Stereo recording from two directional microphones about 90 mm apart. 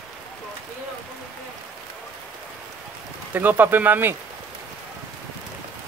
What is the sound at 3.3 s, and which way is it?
Speech, 20° right (ahead or behind).